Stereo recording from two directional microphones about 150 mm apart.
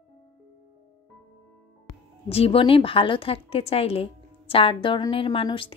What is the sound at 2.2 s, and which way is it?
A woman's voice, 40° left (ahead or behind).